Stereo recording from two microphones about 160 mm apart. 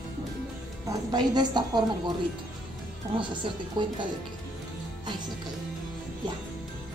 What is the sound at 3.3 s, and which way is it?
Speech, 30° right (ahead or behind).